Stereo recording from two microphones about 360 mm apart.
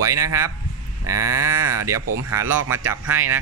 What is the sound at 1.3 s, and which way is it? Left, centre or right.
Speech, right.